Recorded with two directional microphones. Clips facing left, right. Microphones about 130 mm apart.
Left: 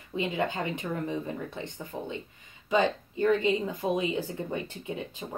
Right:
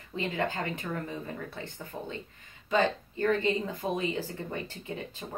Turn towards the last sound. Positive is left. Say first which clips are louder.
# left 3 dB
turn(degrees=15)  # may be behind; listen again after turning